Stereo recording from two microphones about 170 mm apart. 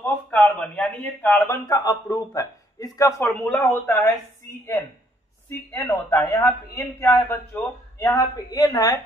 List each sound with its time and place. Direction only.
0.0 s a man's voice: 10° left (ahead or behind)
5.7 s a man's voice: 15° left (ahead or behind)
8.5 s a woman's voice: 25° left (ahead or behind)